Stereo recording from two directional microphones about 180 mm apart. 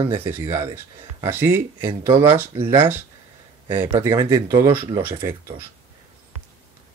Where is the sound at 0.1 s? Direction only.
15° right (ahead or behind).